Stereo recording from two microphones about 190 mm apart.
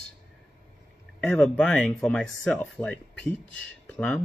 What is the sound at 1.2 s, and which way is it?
Speech, 5° left (ahead or behind).